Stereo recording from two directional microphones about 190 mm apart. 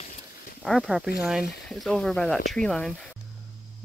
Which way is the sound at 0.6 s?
Centre (ahead or behind).